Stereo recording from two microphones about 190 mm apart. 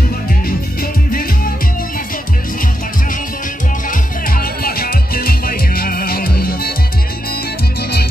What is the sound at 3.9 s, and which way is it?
Music, 50° left (ahead or behind).